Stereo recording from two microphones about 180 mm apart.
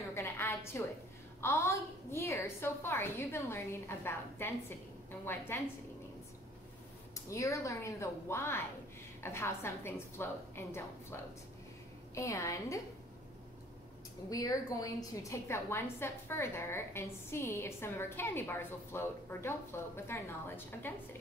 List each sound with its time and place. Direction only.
0.1 s a sound: 15° left (ahead or behind)
1.4 s a woman's voice: 15° left (ahead or behind)
7.2 s a woman's voice: 15° left (ahead or behind)
12.2 s a woman's voice: 15° left (ahead or behind)
14.3 s a woman's voice: 20° left (ahead or behind)